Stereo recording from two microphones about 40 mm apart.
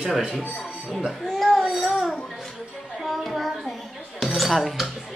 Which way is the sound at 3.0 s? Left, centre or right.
Centre.